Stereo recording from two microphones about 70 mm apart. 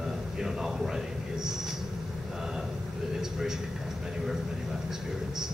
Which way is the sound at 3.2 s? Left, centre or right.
Centre.